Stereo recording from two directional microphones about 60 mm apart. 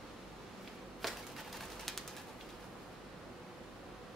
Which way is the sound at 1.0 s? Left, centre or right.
Centre.